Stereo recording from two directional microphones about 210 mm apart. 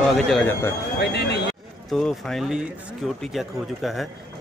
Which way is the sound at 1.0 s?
50° left (ahead or behind).